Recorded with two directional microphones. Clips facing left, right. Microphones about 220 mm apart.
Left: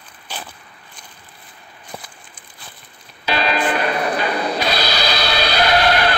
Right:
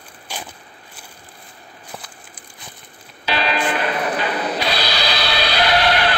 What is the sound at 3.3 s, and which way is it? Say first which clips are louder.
Music: left 2 dB; 45° left (ahead or behind).